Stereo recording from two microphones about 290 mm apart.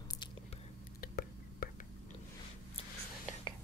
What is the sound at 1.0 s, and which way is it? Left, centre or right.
Whispering, left.